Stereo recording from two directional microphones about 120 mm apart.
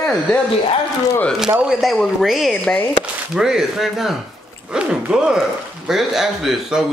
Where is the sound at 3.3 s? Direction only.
5° right (ahead or behind).